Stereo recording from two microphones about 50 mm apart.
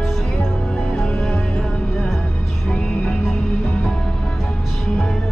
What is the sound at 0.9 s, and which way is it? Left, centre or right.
Music, left.